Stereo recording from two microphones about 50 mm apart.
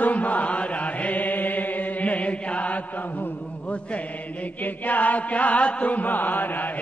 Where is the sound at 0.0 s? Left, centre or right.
Left.